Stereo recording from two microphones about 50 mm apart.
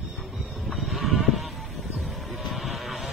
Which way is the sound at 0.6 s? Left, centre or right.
Centre.